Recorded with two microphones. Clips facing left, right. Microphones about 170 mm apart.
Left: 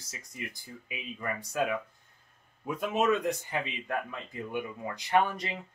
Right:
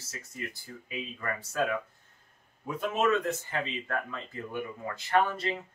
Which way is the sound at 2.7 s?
10° left (ahead or behind).